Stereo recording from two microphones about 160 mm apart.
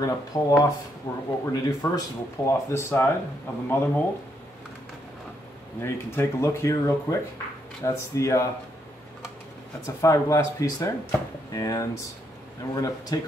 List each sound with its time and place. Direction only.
0.0 s speech: 20° left (ahead or behind)
5.8 s speech: 15° left (ahead or behind)
9.8 s speech: 20° left (ahead or behind)